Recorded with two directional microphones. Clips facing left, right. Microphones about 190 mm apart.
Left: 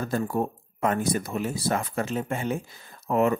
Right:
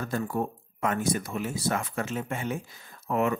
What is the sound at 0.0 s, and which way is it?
Speech, 35° left (ahead or behind).